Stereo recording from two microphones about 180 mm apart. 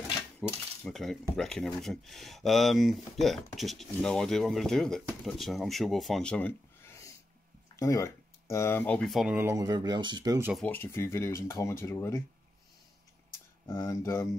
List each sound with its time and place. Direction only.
0.4 s speech: centre (ahead or behind)
9.4 s speech: 15° right (ahead or behind)
10.5 s speech: 10° left (ahead or behind)
13.7 s speech: 15° left (ahead or behind)